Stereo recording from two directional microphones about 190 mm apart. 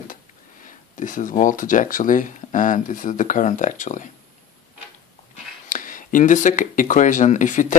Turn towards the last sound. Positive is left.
turn(degrees=40)  # may be behind; listen again after turning